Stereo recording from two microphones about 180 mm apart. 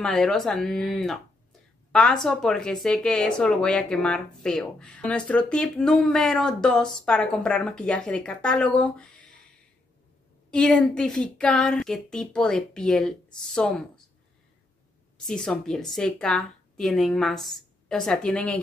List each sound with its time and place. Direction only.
0.0 s a woman's voice: 5° left (ahead or behind)
10.5 s a woman's voice: 5° left (ahead or behind)
15.2 s a woman's voice: 5° left (ahead or behind)